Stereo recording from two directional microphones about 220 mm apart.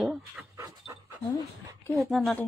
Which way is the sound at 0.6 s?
15° right (ahead or behind).